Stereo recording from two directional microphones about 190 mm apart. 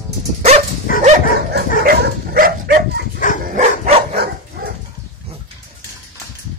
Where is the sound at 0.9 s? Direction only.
50° left (ahead or behind).